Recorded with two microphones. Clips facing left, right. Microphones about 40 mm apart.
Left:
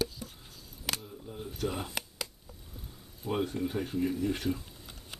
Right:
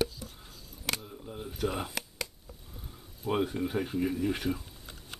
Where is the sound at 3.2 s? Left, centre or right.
Centre.